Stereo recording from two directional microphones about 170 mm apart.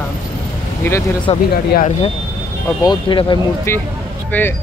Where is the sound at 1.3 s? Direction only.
35° left (ahead or behind).